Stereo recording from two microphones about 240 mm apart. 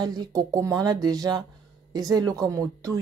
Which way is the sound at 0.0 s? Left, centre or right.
Centre.